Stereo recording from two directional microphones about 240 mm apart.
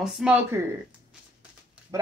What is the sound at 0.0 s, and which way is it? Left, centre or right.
Speech, centre.